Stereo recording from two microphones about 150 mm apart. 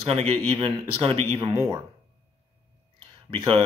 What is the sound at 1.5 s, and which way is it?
Speech, 20° right (ahead or behind).